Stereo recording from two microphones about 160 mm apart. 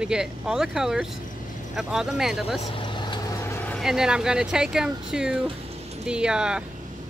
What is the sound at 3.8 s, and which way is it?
Speech, 5° right (ahead or behind).